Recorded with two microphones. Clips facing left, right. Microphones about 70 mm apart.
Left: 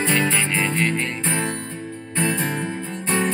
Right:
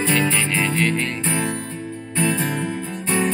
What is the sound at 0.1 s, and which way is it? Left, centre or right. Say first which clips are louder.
Music: right 1 dB; left.